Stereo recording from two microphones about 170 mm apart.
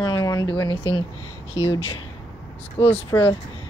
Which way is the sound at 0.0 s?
25° left (ahead or behind).